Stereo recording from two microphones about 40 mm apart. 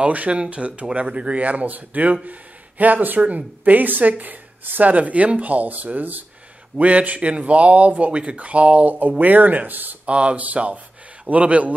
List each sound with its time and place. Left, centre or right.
0.0 s speech: right
4.9 s speech: right
9.2 s speech: right
10.0 s speech: right